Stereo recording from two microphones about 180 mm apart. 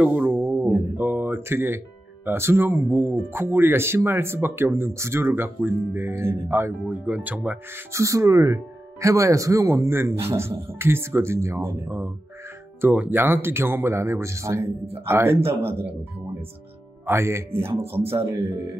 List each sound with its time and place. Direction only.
0.0 s a sound: 10° right (ahead or behind)
2.2 s speech: 15° right (ahead or behind)
17.0 s speech: 15° right (ahead or behind)